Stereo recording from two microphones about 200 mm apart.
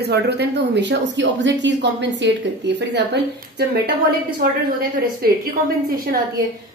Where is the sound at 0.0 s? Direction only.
55° right (ahead or behind).